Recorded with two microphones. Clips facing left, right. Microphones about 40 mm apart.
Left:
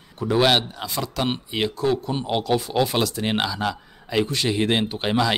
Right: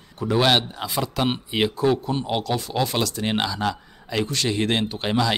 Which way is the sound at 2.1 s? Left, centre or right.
Centre.